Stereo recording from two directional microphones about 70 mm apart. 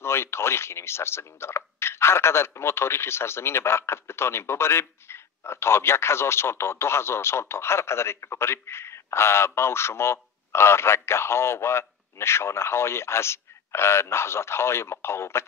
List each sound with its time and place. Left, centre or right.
0.0 s speech: left